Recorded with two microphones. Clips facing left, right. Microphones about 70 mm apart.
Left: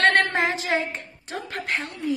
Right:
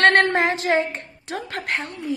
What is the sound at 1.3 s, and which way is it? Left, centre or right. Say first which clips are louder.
Speech: right 2 dB; right.